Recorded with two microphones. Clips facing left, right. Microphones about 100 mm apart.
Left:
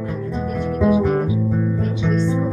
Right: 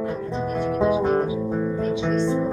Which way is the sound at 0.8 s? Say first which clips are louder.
Left 4 dB; 30° right (ahead or behind).